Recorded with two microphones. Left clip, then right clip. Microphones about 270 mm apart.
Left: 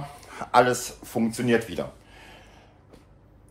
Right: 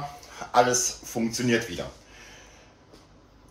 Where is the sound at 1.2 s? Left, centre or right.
Left.